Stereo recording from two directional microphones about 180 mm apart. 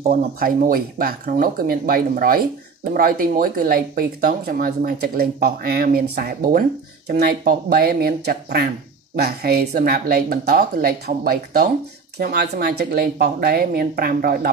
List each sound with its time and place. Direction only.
0.1 s speech: 50° right (ahead or behind)